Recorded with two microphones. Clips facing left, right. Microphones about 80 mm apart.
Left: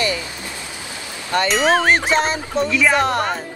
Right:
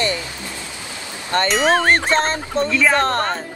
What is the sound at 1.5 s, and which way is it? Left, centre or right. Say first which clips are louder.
Speech: even; centre.